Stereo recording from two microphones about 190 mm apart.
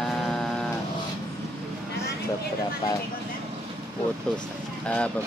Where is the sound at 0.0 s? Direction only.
Centre (ahead or behind).